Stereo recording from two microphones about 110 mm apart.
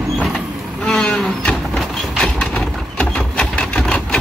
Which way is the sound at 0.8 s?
5° left (ahead or behind).